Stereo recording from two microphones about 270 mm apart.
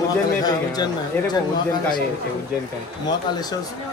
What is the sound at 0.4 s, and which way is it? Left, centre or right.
Speech, centre.